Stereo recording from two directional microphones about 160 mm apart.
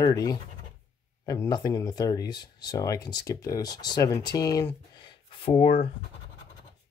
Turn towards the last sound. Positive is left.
turn(degrees=40)  # may be behind; listen again after turning